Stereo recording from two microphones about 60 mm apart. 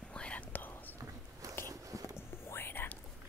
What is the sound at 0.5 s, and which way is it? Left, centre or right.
Whispering, left.